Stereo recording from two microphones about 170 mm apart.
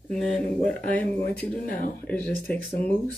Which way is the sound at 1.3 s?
65° left (ahead or behind).